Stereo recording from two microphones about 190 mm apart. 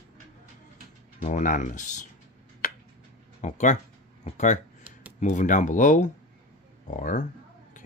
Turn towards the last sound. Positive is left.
turn(degrees=40)  # may be behind; listen again after turning